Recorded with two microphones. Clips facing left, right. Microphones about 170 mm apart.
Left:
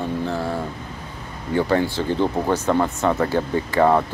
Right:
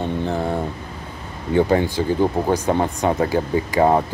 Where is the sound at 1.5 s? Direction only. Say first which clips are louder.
Right 3 dB; 20° right (ahead or behind).